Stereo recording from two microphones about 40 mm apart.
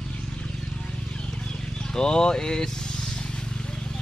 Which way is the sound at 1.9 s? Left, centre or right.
Centre.